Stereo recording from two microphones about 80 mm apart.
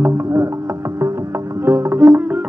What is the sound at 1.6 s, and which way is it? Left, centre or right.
Music, right.